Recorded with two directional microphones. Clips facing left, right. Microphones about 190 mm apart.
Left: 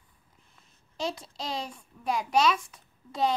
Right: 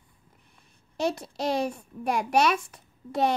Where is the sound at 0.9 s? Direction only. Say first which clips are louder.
Right 5 dB; 65° right (ahead or behind).